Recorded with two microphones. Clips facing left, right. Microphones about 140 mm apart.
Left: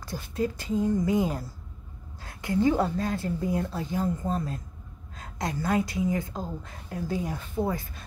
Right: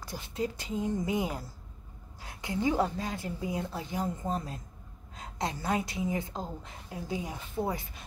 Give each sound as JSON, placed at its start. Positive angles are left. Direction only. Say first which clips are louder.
{"t": 0.0, "sound": "a woman's voice", "louder": "left 4 dB", "side_deg": -20}